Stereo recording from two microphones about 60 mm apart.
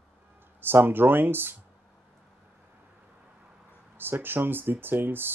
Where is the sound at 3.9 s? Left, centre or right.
Right.